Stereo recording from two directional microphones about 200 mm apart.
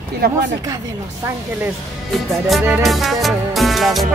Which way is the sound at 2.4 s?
5° right (ahead or behind).